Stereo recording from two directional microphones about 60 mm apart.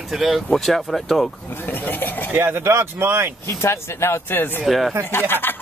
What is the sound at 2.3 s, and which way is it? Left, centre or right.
Speech, right.